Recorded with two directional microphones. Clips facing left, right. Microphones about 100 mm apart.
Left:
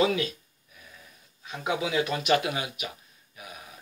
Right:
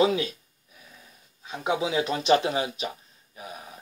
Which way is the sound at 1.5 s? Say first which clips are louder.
Right 2 dB; 25° right (ahead or behind).